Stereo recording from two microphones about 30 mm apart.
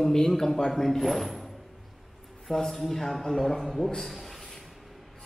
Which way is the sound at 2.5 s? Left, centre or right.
Centre.